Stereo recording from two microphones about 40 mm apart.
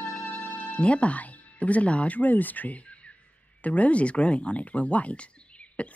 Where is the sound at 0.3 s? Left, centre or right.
Left.